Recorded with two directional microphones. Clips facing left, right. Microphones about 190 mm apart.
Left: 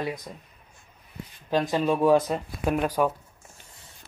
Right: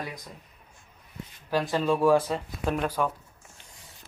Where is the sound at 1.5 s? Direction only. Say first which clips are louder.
Left 2 dB; 20° left (ahead or behind).